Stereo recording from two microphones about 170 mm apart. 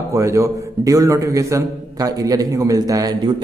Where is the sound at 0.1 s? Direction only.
15° right (ahead or behind).